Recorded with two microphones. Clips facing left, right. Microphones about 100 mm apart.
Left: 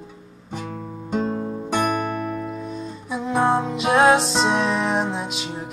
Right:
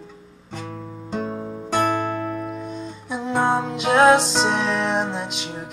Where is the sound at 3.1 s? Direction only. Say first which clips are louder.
Left 1 dB; centre (ahead or behind).